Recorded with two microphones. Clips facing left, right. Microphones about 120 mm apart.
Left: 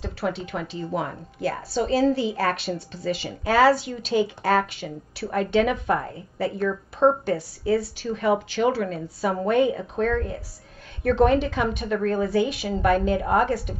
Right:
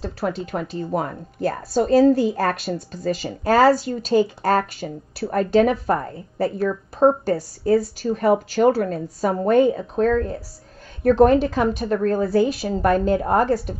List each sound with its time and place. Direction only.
0.0 s speech: 40° right (ahead or behind)